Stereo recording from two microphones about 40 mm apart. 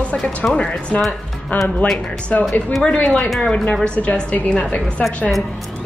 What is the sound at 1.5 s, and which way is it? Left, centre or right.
A man's voice, left.